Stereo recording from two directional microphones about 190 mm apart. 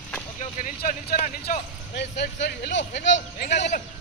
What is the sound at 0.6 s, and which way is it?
Speech, 45° left (ahead or behind).